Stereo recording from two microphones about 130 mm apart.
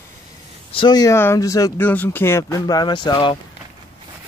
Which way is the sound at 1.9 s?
15° left (ahead or behind).